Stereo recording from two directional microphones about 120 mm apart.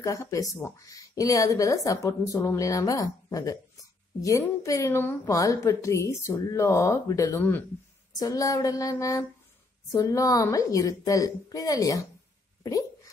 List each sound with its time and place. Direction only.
0.0 s a woman's voice: 25° left (ahead or behind)
8.2 s a woman's voice: 30° left (ahead or behind)